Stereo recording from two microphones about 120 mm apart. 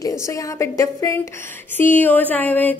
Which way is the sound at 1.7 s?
15° left (ahead or behind).